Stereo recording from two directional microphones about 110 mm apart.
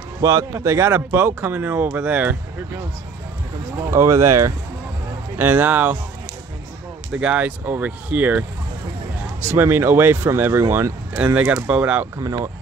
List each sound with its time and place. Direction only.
0.2 s speech: 30° right (ahead or behind)
3.9 s speech: 25° right (ahead or behind)
7.1 s speech: 10° right (ahead or behind)
12.2 s speech: 30° right (ahead or behind)